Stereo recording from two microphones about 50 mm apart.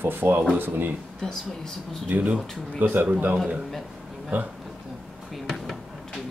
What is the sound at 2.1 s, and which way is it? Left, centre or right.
Speech, right.